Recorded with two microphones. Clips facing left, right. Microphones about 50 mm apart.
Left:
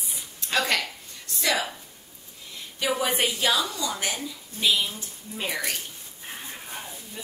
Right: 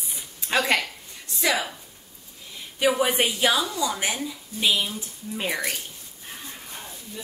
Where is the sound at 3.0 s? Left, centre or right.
Centre.